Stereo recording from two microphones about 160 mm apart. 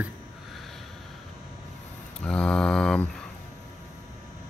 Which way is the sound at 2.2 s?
5° left (ahead or behind).